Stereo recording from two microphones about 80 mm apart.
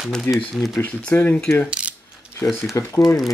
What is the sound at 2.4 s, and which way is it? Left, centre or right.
Speech, left.